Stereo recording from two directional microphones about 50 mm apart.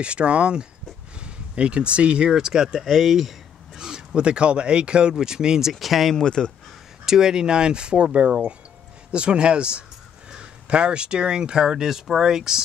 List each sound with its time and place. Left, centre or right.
0.0 s speech: right; by 6.1 s centre
6.1 s speech: centre
7.1 s speech: centre